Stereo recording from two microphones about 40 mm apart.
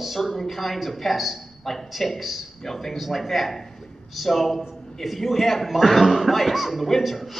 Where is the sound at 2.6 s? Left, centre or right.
Centre.